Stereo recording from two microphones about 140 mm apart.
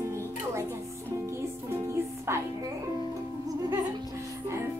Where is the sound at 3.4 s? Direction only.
25° right (ahead or behind).